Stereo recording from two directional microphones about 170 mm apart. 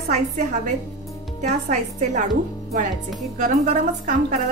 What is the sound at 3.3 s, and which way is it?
Speech, 45° right (ahead or behind).